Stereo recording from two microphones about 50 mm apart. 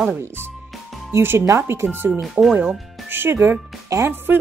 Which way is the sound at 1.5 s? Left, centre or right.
Right.